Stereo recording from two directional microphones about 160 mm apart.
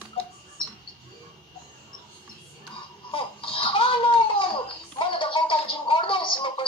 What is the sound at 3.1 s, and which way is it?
Babbling, 35° left (ahead or behind).